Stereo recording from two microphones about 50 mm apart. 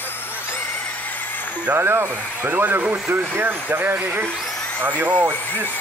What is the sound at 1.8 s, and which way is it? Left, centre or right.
Speech, right.